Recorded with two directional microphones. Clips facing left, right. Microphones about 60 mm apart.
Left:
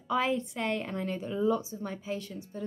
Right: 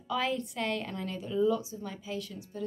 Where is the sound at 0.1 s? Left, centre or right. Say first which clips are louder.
Left 3 dB; left.